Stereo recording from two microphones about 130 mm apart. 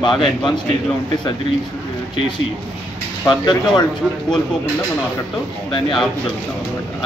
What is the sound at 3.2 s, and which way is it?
Speech, 35° left (ahead or behind).